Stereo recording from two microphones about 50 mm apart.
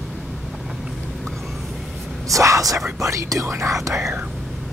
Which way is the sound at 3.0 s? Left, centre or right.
Right.